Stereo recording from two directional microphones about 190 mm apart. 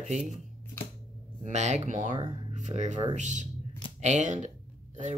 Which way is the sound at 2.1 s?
25° right (ahead or behind).